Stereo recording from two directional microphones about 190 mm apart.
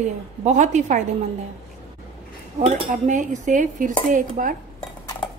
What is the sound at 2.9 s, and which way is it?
Cutlery, 40° right (ahead or behind).